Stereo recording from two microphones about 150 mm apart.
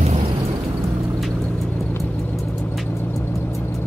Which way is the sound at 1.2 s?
Centre (ahead or behind).